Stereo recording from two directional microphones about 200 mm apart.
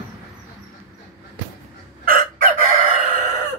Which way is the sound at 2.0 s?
40° right (ahead or behind).